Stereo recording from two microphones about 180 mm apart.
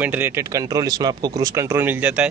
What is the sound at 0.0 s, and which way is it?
Speech, 10° right (ahead or behind).